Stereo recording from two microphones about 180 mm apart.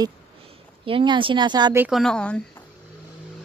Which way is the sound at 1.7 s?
10° right (ahead or behind).